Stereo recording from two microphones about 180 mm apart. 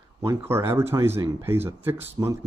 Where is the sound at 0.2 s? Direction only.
15° right (ahead or behind).